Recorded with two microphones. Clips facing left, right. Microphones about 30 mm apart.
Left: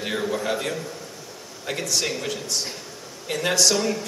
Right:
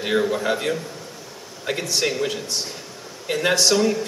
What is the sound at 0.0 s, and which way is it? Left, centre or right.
Speech, centre.